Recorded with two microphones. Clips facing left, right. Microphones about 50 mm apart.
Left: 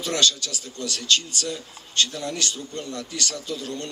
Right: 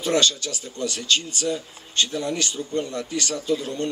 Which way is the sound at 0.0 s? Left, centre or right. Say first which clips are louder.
Right 2 dB; right.